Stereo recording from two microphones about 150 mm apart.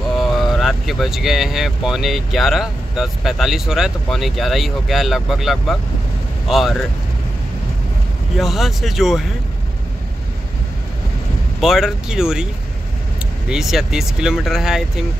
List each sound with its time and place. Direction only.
0.1 s speech: centre (ahead or behind)
8.4 s speech: centre (ahead or behind)
11.6 s speech: centre (ahead or behind)
13.5 s speech: 5° right (ahead or behind)